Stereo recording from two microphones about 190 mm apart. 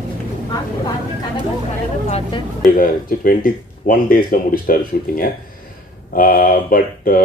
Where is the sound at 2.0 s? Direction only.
30° left (ahead or behind).